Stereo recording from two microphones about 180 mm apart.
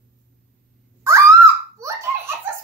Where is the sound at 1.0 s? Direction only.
15° right (ahead or behind).